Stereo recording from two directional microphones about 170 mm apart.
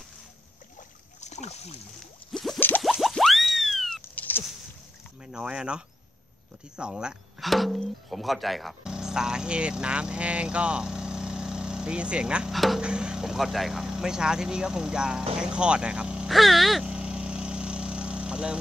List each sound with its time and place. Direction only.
1.2 s boat: 40° left (ahead or behind)
2.3 s a sound: centre (ahead or behind)
2.8 s boing: centre (ahead or behind)
4.0 s a sound: 10° left (ahead or behind)
5.2 s speech: 5° right (ahead or behind)
15.3 s vehicle: 5° right (ahead or behind)